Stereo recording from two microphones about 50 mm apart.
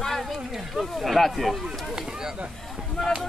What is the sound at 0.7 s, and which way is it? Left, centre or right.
Speech, centre.